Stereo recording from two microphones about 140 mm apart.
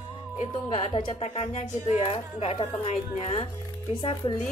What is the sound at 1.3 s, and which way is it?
Speech, 55° left (ahead or behind).